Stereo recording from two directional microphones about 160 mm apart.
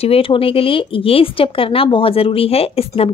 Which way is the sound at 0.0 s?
35° left (ahead or behind).